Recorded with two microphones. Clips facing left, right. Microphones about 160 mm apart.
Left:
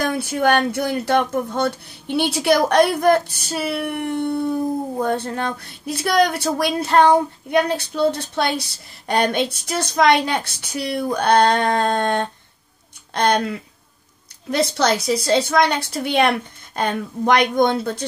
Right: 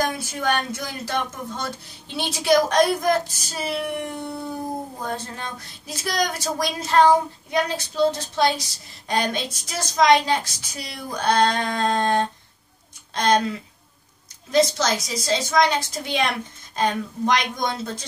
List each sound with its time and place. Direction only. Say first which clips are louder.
0.0 s a woman's voice: left 5 dB; 60° left (ahead or behind)
5.0 s a woman's voice: left 8 dB; 60° left (ahead or behind)
14.5 s a woman's voice: left 1 dB; 60° left (ahead or behind)